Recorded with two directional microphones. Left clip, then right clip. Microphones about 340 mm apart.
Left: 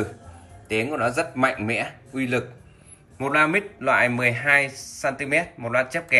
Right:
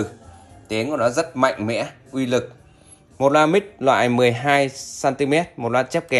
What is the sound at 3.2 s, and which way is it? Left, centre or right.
Speech, centre.